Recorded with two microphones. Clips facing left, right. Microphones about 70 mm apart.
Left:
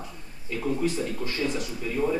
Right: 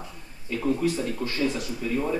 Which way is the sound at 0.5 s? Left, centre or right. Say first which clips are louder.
Right 2 dB; centre.